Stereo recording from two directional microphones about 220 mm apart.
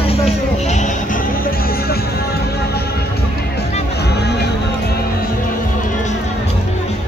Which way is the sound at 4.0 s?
50° left (ahead or behind).